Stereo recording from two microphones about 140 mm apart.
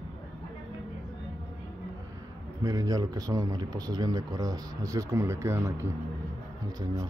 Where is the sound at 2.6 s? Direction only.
25° right (ahead or behind).